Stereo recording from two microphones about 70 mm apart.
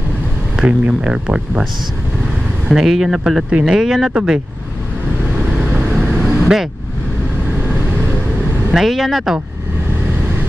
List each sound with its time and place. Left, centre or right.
0.6 s speech: centre
2.7 s speech: centre
5.8 s vehicle: centre
6.1 s vehicle: centre
8.7 s speech: centre